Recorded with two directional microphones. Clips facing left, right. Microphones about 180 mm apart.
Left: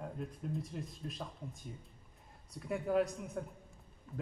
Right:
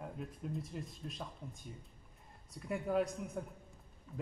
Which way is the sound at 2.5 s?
Centre (ahead or behind).